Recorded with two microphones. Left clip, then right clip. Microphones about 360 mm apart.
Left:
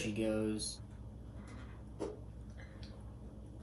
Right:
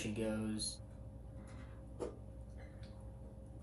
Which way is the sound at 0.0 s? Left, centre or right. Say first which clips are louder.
Left 5 dB; centre.